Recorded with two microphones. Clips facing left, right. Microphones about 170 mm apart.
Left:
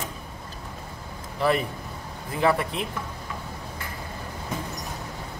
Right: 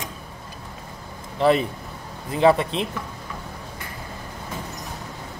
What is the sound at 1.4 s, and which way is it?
Speech, 20° right (ahead or behind).